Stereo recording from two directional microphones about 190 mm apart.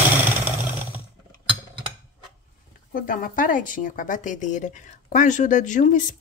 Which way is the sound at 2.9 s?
45° left (ahead or behind).